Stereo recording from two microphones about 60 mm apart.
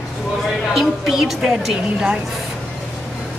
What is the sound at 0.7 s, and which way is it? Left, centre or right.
A woman's voice, centre.